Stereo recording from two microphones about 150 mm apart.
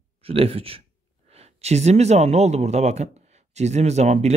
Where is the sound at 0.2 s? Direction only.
40° right (ahead or behind).